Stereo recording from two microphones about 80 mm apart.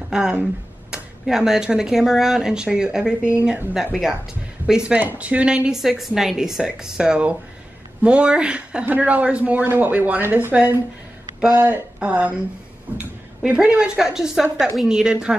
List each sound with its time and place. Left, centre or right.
0.1 s speech: centre
4.6 s speech: centre
5.0 s speech: right
13.4 s a woman's voice: centre